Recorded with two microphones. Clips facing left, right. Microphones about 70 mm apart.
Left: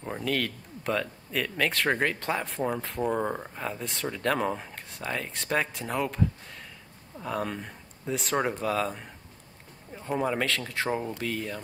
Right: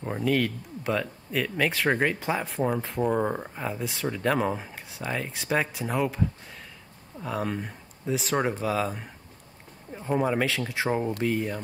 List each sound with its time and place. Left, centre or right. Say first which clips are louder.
0.0 s speech: right 4 dB; centre